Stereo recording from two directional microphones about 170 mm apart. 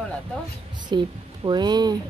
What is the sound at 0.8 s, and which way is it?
A woman's voice, 25° right (ahead or behind).